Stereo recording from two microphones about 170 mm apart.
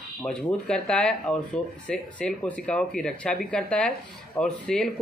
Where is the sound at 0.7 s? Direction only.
5° left (ahead or behind).